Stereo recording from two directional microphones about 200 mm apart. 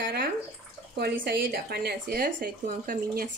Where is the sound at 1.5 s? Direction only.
50° right (ahead or behind).